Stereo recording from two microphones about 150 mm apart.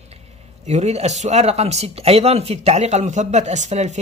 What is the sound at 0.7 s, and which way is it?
Speech, 45° right (ahead or behind).